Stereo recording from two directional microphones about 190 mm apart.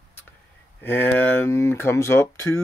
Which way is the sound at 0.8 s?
10° left (ahead or behind).